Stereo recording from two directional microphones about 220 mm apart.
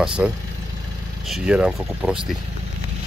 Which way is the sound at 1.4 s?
5° right (ahead or behind).